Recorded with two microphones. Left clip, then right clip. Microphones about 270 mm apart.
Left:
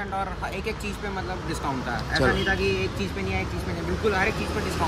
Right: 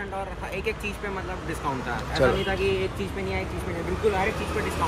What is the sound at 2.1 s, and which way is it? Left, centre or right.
Speech, centre.